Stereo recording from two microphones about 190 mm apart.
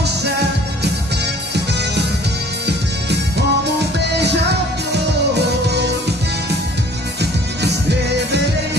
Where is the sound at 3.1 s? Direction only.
60° right (ahead or behind).